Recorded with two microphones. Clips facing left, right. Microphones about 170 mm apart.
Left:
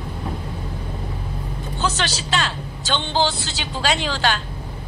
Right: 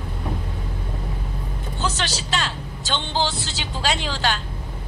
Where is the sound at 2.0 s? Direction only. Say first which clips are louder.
Left 3 dB; 75° left (ahead or behind).